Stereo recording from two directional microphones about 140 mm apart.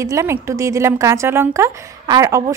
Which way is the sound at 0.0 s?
20° right (ahead or behind).